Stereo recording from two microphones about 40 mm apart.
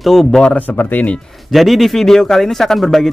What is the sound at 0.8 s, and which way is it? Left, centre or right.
Speech, left.